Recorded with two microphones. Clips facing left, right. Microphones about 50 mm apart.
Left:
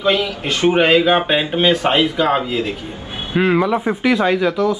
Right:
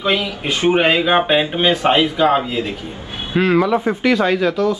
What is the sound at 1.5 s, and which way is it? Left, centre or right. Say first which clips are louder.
A man's voice: even; centre.